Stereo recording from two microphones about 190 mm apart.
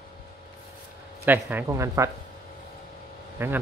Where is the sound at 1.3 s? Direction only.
10° right (ahead or behind).